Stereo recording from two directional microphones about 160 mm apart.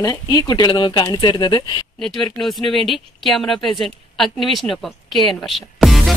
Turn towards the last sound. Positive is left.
turn(degrees=0)  # may be behind; listen again after turning